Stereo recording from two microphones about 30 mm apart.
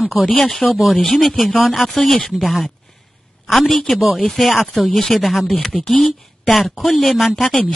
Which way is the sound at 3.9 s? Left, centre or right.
Centre.